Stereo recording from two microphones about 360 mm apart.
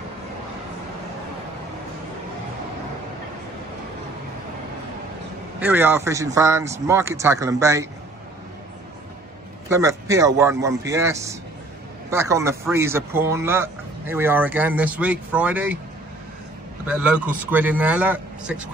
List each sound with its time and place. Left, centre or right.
5.6 s speech: centre
9.7 s speech: centre
16.8 s speech: centre